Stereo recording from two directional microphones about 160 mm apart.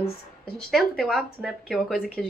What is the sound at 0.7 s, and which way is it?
Speech, centre (ahead or behind).